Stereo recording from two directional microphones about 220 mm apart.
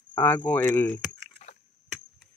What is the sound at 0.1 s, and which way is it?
Speech, 10° left (ahead or behind).